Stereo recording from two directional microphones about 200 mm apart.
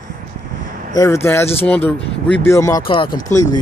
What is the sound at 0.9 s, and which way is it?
Speech, 15° left (ahead or behind).